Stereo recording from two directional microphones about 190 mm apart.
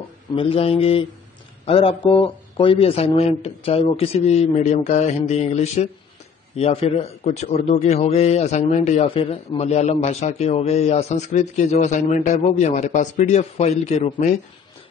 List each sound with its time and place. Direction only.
0.4 s a man's voice: 30° left (ahead or behind)